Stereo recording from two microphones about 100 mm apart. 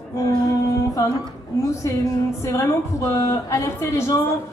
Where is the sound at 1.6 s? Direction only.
30° left (ahead or behind).